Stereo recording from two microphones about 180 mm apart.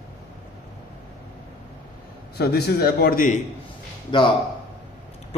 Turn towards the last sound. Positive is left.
turn(degrees=25)  # may be behind; listen again after turning